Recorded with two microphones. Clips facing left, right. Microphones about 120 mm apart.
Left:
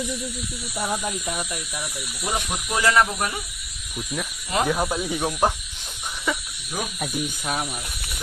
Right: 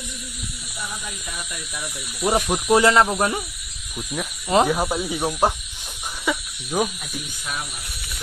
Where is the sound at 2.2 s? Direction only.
30° right (ahead or behind).